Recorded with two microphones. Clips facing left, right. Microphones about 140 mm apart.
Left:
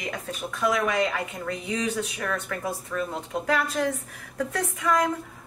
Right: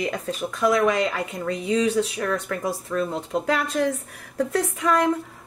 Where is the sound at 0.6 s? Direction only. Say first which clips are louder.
Right 4 dB; 30° right (ahead or behind).